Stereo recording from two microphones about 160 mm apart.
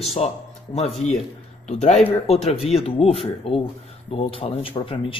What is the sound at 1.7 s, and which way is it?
Speech, 45° left (ahead or behind).